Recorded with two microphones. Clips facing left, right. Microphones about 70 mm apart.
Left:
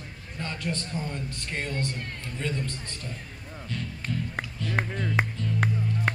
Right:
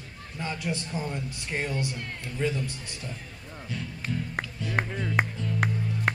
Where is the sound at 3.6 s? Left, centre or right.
Centre.